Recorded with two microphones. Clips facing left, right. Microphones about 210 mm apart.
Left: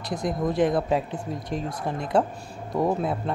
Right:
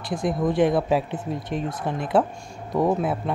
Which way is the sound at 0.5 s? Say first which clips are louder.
Right 2 dB; 25° right (ahead or behind).